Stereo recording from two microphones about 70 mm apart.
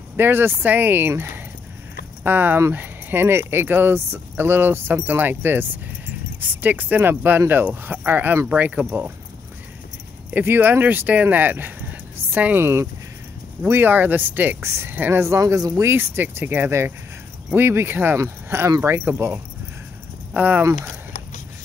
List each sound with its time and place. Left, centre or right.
0.2 s speech: right
10.3 s speech: right
12.5 s speech: right
14.6 s speech: right
15.7 s speech: right
20.3 s speech: right